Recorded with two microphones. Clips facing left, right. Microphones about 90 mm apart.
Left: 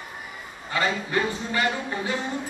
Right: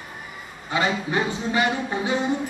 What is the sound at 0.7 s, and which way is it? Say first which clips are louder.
Speech: right 2 dB; 20° right (ahead or behind).